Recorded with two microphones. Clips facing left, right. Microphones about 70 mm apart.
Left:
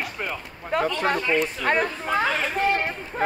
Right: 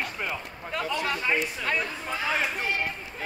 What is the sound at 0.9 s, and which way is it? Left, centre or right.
Speech, left.